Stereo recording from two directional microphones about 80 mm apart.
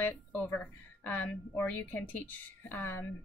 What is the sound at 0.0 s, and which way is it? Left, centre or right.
A woman's voice, left.